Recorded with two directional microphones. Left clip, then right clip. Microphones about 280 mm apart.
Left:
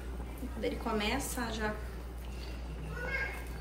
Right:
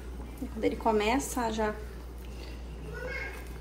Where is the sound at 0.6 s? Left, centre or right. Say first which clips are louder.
Right 7 dB; centre.